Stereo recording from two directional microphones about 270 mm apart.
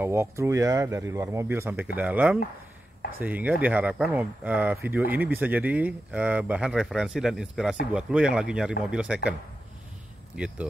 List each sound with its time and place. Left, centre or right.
0.0 s speech: centre
10.3 s speech: centre